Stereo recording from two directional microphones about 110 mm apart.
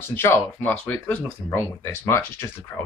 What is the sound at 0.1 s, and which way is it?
Speech, 20° left (ahead or behind).